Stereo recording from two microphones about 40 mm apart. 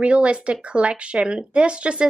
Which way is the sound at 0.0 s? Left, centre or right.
Right.